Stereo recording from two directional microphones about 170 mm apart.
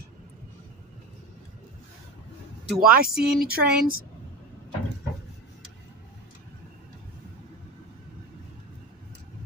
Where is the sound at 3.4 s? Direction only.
65° right (ahead or behind).